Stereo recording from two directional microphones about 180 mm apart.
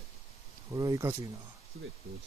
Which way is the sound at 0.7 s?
20° right (ahead or behind).